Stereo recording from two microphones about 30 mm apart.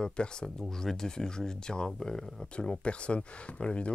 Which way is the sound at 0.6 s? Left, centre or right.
Centre.